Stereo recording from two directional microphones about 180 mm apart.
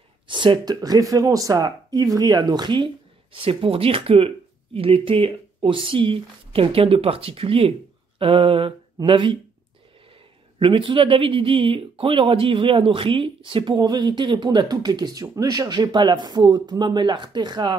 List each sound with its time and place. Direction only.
0.3 s speech: 25° right (ahead or behind)
10.6 s speech: 30° right (ahead or behind)